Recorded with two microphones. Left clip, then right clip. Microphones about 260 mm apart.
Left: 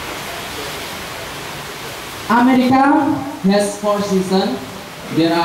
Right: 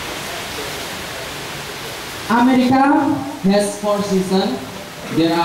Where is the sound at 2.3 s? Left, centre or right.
Centre.